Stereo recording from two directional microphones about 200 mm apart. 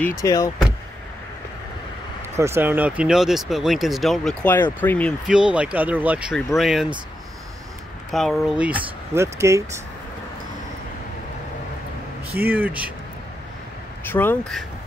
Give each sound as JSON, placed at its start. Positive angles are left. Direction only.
{"t": 0.0, "sound": "speech", "side_deg": 15}
{"t": 2.3, "sound": "speech", "side_deg": -15}
{"t": 5.3, "sound": "speech", "side_deg": -5}
{"t": 8.1, "sound": "speech", "side_deg": 0}
{"t": 12.4, "sound": "speech", "side_deg": -10}
{"t": 14.0, "sound": "speech", "side_deg": 10}